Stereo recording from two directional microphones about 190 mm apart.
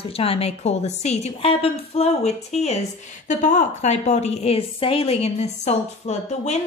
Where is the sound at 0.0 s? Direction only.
30° left (ahead or behind).